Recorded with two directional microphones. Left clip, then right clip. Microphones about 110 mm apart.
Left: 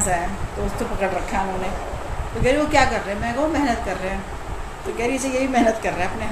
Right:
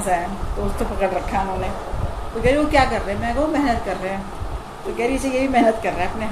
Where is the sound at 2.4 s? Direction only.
20° right (ahead or behind).